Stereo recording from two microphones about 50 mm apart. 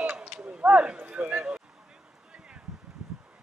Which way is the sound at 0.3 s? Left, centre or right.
Centre.